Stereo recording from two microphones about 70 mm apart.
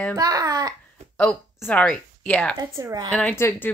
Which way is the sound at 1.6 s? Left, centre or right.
Left.